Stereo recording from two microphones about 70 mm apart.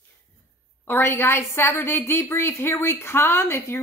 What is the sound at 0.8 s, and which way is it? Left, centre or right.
A woman's voice, left.